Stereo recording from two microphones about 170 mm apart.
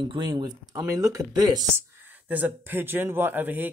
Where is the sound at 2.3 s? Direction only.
10° right (ahead or behind).